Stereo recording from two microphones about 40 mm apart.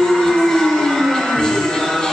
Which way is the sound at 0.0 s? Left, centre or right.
Centre.